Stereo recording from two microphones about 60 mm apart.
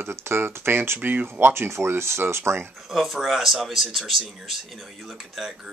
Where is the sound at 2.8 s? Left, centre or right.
Centre.